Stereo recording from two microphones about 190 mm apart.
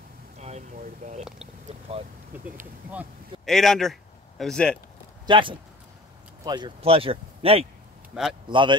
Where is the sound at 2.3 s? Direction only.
10° right (ahead or behind).